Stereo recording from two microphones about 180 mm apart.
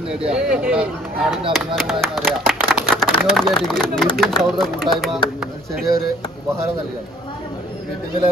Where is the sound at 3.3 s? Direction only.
Centre (ahead or behind).